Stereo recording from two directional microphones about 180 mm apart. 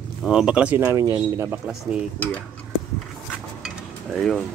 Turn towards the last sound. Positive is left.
turn(degrees=0)  # may be behind; listen again after turning